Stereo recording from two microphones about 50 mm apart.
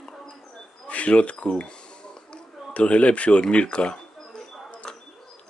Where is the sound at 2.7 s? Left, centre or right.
Left.